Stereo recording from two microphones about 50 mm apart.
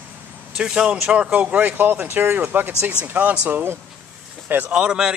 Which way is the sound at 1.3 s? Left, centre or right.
Right.